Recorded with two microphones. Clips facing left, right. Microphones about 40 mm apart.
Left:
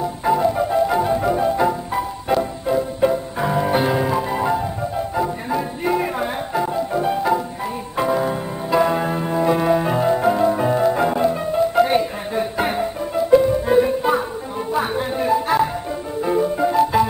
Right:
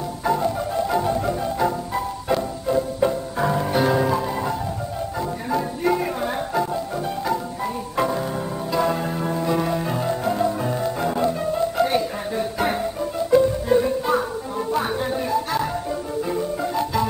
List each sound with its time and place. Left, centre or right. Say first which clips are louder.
0.2 s music: left 4 dB; centre
8.7 s music: left 5 dB; left